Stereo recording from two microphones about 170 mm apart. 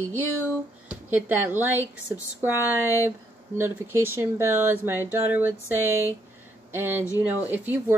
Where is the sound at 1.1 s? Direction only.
10° right (ahead or behind).